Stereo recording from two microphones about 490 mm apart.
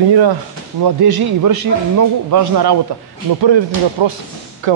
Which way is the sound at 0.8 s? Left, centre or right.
Right.